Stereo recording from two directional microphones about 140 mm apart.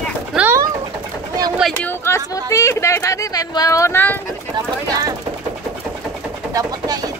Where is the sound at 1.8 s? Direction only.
15° left (ahead or behind).